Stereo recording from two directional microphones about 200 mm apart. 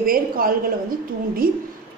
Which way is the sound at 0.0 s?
45° right (ahead or behind).